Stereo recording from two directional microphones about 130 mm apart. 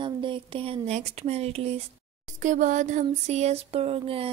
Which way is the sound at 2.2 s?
70° right (ahead or behind).